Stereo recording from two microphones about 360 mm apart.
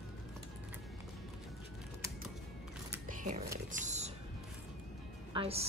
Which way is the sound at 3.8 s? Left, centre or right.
Centre.